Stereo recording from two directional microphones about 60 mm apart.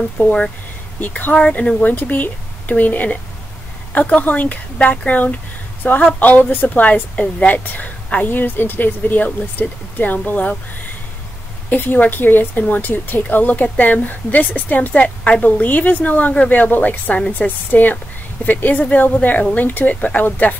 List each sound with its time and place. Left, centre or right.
0.2 s speech: centre
1.0 s speech: left
1.3 s speech: centre
11.7 s speech: left